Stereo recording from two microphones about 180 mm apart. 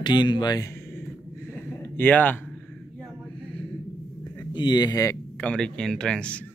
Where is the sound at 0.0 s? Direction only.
25° left (ahead or behind); by 2.8 s 10° left (ahead or behind).